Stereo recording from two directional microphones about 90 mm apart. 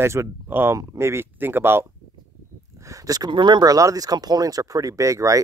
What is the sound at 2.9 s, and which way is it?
Speech, 45° right (ahead or behind).